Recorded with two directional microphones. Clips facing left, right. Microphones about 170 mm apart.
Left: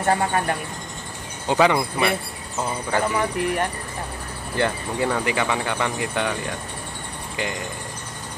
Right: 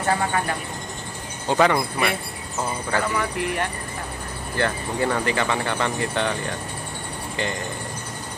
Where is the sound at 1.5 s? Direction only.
15° left (ahead or behind).